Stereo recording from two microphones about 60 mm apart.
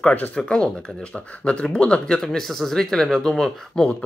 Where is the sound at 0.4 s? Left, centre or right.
Centre.